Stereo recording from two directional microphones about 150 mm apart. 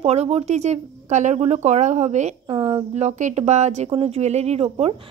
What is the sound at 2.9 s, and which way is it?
A woman's voice, 45° right (ahead or behind).